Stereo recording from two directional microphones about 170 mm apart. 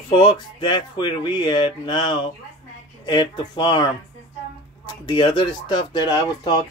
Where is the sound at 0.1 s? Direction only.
25° left (ahead or behind).